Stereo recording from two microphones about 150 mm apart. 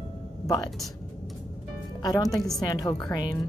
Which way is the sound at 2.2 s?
Centre (ahead or behind).